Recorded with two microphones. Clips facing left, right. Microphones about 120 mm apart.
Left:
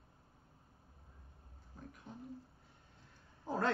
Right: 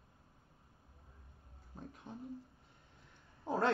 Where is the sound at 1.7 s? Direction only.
25° right (ahead or behind).